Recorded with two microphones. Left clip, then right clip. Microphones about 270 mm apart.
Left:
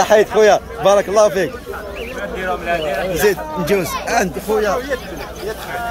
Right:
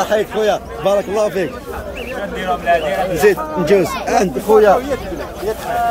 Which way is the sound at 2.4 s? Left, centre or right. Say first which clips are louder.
Right 5 dB; right.